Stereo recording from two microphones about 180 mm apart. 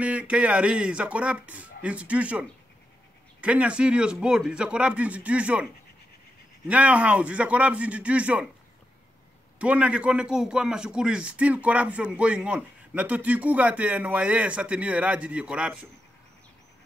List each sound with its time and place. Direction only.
0.0 s a man's voice: 5° right (ahead or behind)
6.7 s a man's voice: 10° right (ahead or behind)
9.6 s a man's voice: 5° right (ahead or behind)